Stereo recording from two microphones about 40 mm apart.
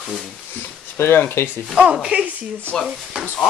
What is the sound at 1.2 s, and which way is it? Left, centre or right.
Speech, left.